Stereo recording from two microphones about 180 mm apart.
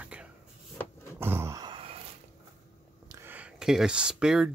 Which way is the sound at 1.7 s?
30° right (ahead or behind).